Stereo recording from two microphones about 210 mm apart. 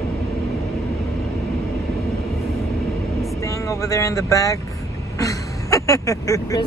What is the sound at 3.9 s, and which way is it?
Speech, 15° left (ahead or behind).